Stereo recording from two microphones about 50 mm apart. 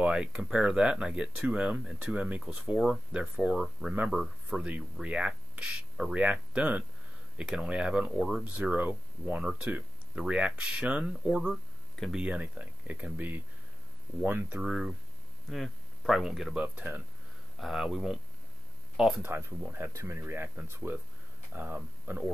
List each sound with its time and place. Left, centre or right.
0.0 s speech: centre
2.4 s speech: centre
4.1 s speech: centre; by 13.4 s right
14.2 s speech: right
14.6 s speech: centre
15.4 s speech: centre
16.6 s speech: right
17.6 s speech: centre
19.2 s speech: right
19.9 s speech: right
20.2 s speech: right